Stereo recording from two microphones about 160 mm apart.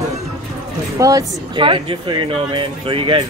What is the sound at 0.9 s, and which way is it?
Speech, 20° right (ahead or behind).